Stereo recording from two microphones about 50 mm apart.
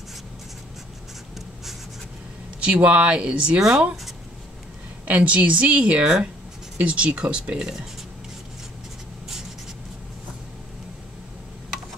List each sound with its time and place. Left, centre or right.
2.6 s a woman's voice: right
3.5 s speech: centre
5.0 s a woman's voice: right